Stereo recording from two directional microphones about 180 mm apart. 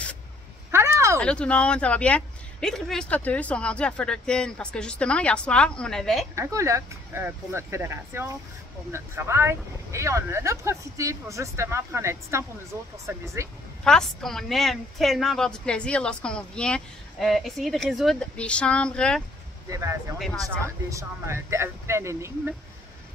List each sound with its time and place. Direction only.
0.7 s a sound: 15° right (ahead or behind)
1.2 s a woman's voice: 5° left (ahead or behind)
6.3 s speech: 15° right (ahead or behind)
13.8 s a woman's voice: 5° left (ahead or behind)
19.7 s speech: 20° right (ahead or behind)